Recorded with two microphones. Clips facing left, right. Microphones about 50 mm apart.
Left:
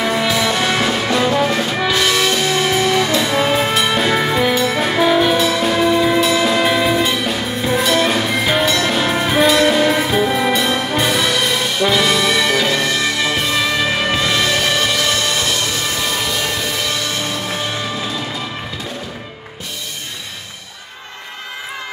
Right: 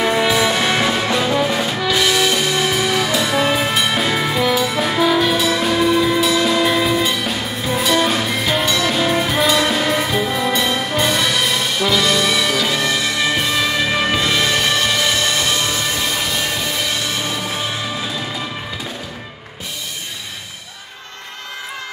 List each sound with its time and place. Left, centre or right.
0.0 s music: centre
4.6 s music: centre
4.9 s music: left
5.4 s music: centre
10.2 s music: centre
10.5 s brass instrument: centre
12.3 s music: centre
16.8 s music: centre